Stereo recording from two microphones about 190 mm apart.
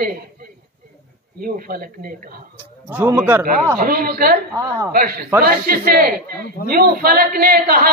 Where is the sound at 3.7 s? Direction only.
50° right (ahead or behind).